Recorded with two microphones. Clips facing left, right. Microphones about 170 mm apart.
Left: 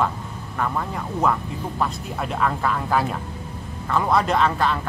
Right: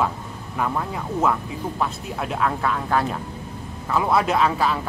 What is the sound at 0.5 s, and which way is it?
Speech, 5° right (ahead or behind).